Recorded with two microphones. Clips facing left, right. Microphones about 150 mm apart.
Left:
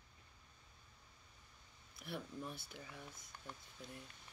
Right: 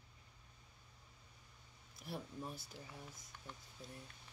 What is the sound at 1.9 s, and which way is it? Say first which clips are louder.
Speech: even; 35° right (ahead or behind).